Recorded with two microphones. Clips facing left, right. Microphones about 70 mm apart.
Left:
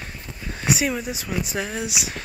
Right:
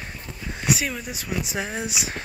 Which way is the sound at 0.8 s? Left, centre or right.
Centre.